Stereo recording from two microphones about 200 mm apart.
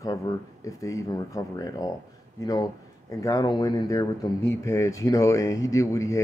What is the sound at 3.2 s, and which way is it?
Speech, 20° left (ahead or behind).